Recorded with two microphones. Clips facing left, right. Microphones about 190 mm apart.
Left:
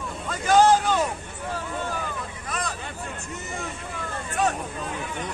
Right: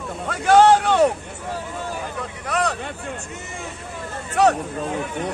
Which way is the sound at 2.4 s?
75° right (ahead or behind).